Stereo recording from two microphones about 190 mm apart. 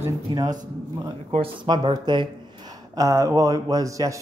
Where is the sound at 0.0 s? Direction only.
20° right (ahead or behind).